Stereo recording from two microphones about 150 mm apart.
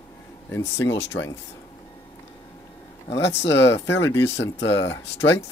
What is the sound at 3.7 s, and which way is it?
Speech, 20° left (ahead or behind).